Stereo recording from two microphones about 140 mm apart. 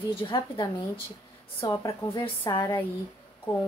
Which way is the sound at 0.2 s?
35° left (ahead or behind).